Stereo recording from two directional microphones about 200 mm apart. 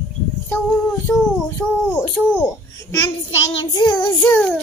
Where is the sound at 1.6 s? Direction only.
15° left (ahead or behind).